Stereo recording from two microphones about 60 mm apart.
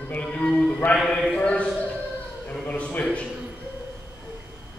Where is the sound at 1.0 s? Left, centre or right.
Centre.